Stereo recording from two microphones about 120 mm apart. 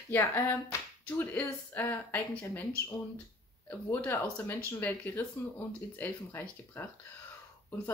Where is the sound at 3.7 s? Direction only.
15° left (ahead or behind).